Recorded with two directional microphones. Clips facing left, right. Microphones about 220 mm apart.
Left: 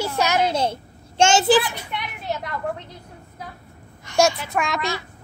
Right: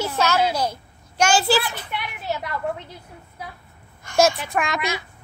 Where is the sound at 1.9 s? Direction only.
Centre (ahead or behind).